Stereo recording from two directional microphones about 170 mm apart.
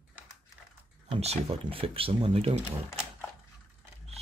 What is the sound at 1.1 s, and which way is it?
Speech, 35° right (ahead or behind).